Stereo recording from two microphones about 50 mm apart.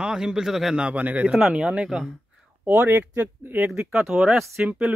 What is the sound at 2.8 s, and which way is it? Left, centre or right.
Speech, right.